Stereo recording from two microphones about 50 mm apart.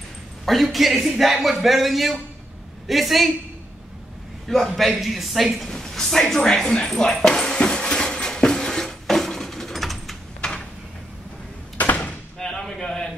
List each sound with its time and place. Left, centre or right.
0.5 s a man's voice: centre
4.5 s a man's voice: centre
5.7 s a sound: centre
10.4 s a sound: centre
11.8 s door: left
12.4 s slam: centre